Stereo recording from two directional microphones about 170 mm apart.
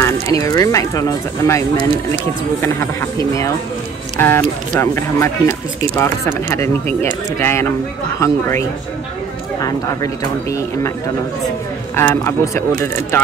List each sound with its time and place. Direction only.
0.0 s speech: 20° left (ahead or behind)
4.2 s speech: 15° left (ahead or behind)
11.9 s speech: 15° left (ahead or behind)